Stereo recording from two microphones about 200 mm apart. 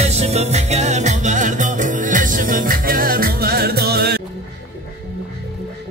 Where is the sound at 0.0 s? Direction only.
30° right (ahead or behind); by 4.2 s 50° right (ahead or behind).